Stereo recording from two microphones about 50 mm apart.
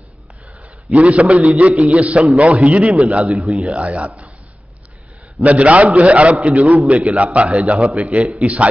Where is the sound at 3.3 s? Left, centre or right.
Centre.